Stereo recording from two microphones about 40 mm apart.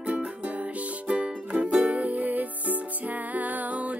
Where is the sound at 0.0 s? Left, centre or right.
Right.